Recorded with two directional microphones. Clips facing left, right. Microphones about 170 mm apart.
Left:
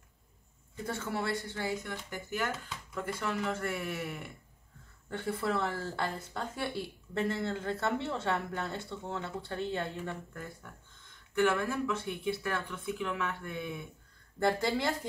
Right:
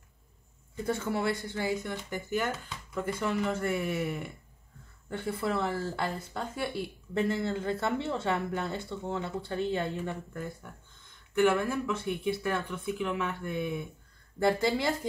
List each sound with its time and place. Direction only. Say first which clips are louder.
0.8 s a woman's voice: right 5 dB; 15° right (ahead or behind)
5.1 s a woman's voice: right 1 dB; 10° right (ahead or behind)